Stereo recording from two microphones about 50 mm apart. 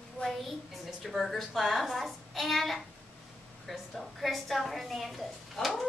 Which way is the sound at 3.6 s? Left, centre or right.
Centre.